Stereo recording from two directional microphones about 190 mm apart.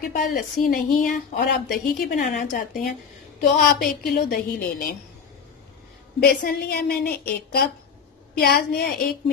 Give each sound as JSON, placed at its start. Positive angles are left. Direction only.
{"t": 0.0, "sound": "a woman's voice", "side_deg": 50}
{"t": 6.1, "sound": "a woman's voice", "side_deg": 55}